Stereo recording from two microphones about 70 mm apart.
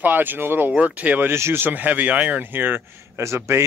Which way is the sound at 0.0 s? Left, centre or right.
Right.